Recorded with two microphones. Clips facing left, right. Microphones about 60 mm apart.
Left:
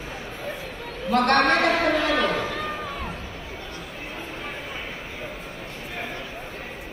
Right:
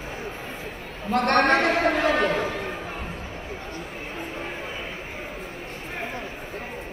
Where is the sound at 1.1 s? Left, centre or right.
Right.